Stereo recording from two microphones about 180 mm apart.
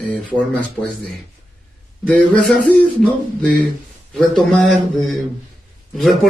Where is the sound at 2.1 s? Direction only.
5° left (ahead or behind).